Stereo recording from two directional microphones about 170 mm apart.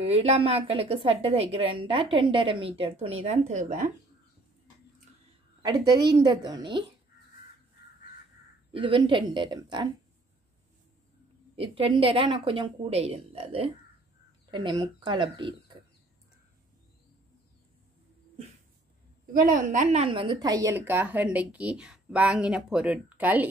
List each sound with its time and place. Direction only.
0.0 s a woman's voice: 35° right (ahead or behind)
5.6 s a woman's voice: 25° right (ahead or behind)
8.7 s a woman's voice: 30° right (ahead or behind)
11.5 s a woman's voice: 35° right (ahead or behind)
19.3 s a woman's voice: 50° right (ahead or behind)
20.1 s a woman's voice: 30° right (ahead or behind); by 23.5 s 10° right (ahead or behind)